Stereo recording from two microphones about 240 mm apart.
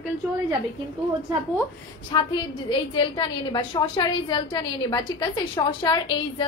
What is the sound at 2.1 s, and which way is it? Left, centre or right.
A woman's voice, centre.